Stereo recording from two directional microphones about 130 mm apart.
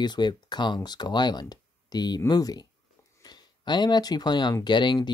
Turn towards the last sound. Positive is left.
turn(degrees=35)  # may be behind; listen again after turning